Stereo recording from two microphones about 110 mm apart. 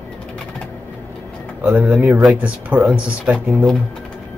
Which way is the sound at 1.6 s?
10° right (ahead or behind).